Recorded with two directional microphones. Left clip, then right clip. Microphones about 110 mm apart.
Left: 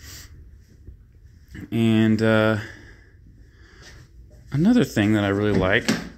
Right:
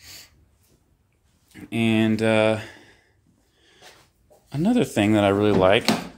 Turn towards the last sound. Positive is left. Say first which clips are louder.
# right 3 dB
turn(degrees=-70)  # may be behind; listen again after turning